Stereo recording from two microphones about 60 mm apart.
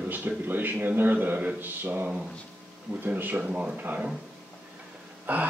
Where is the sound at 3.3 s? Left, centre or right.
Centre.